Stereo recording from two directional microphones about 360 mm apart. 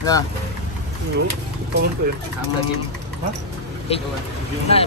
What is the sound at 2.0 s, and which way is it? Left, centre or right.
Speech, right.